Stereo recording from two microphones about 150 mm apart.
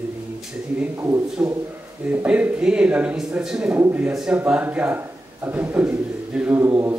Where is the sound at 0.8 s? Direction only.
15° right (ahead or behind).